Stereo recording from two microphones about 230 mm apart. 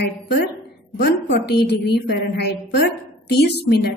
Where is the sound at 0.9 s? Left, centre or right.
Left.